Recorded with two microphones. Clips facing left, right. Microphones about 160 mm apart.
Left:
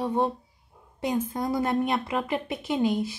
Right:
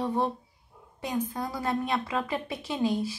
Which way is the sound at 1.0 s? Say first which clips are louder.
Left 4 dB; 25° left (ahead or behind).